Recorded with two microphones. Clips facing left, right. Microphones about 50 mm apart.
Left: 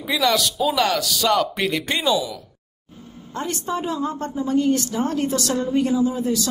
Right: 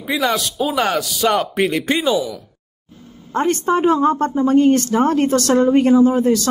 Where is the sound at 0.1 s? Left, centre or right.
Right.